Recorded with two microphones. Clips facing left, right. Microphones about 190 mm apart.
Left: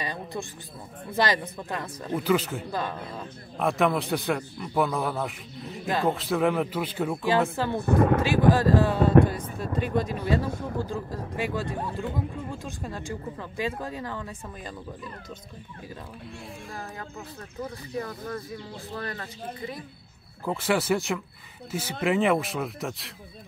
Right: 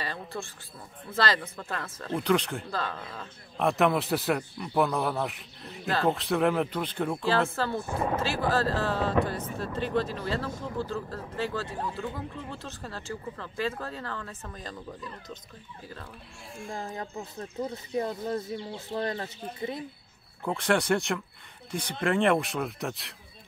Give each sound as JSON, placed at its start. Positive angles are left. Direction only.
{"t": 0.0, "sound": "speech", "side_deg": 15}
{"t": 2.1, "sound": "a man's voice", "side_deg": 5}
{"t": 2.7, "sound": "speech", "side_deg": 15}
{"t": 3.5, "sound": "a man's voice", "side_deg": 0}
{"t": 7.8, "sound": "speech", "side_deg": 65}
{"t": 8.2, "sound": "speech", "side_deg": 15}
{"t": 16.7, "sound": "speech", "side_deg": -25}
{"t": 20.4, "sound": "a man's voice", "side_deg": 5}